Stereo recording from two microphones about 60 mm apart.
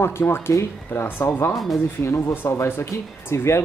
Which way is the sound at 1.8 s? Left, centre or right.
Left.